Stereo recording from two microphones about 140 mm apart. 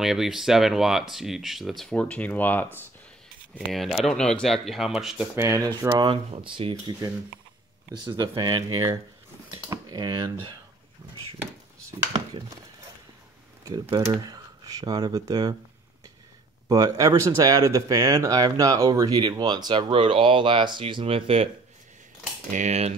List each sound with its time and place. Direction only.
0.0 s speech: centre (ahead or behind)
3.5 s speech: centre (ahead or behind)
5.3 s speech: 20° right (ahead or behind)
6.3 s speech: 40° right (ahead or behind)
12.1 s speech: 30° right (ahead or behind)
13.7 s speech: 20° right (ahead or behind)
16.6 s speech: 25° right (ahead or behind); by 21.5 s 45° right (ahead or behind)
22.5 s typing: 55° right (ahead or behind)